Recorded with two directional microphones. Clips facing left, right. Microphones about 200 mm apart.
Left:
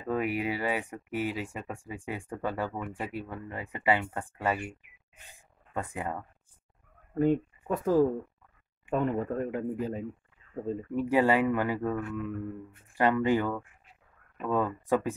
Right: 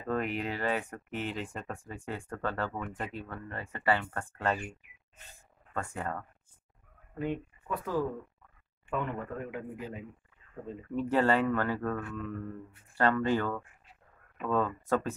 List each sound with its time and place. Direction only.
0.0 s speech: 10° left (ahead or behind)
7.2 s speech: 45° left (ahead or behind)
11.0 s speech: 10° left (ahead or behind)